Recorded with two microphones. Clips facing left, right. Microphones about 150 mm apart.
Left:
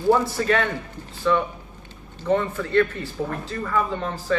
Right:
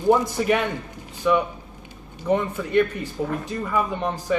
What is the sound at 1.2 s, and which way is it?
Speech, 15° right (ahead or behind).